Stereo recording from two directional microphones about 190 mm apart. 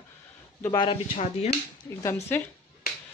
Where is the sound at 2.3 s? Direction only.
10° left (ahead or behind).